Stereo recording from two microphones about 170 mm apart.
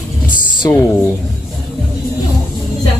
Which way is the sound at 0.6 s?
15° left (ahead or behind).